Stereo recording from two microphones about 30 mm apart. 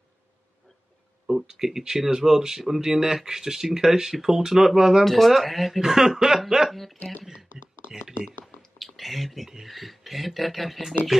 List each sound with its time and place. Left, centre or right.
1.5 s speech: centre
5.0 s speech: centre
5.9 s speech: centre
6.7 s speech: centre
7.0 s speech: left
7.2 s speech: centre
8.7 s a sound: centre
9.7 s speech: centre